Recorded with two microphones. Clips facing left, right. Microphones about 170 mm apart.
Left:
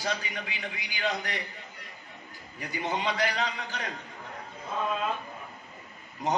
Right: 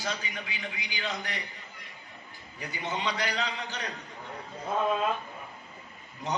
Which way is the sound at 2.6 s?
45° left (ahead or behind).